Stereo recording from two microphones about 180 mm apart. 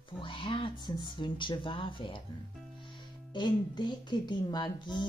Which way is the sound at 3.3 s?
25° left (ahead or behind).